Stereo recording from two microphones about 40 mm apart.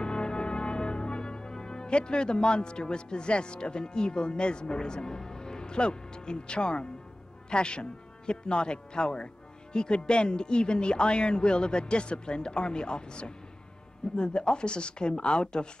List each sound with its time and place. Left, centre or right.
0.0 s music: left
7.4 s speech: left